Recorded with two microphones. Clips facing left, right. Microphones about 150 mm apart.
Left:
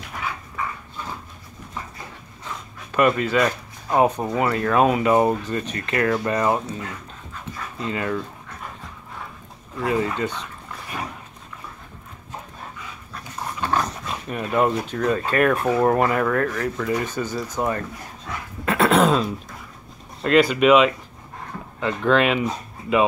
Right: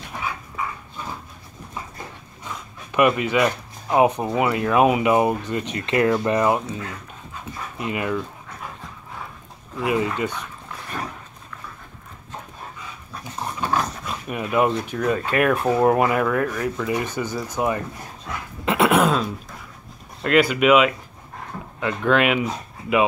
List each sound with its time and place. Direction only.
2.9 s speech: 15° right (ahead or behind)
9.8 s speech: 15° right (ahead or behind)
13.1 s dog: 10° right (ahead or behind)
14.2 s speech: 10° right (ahead or behind)
18.7 s throat clearing: 15° right (ahead or behind)
20.2 s speech: 5° right (ahead or behind)